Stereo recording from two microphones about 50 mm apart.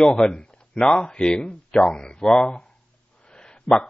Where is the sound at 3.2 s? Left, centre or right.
Centre.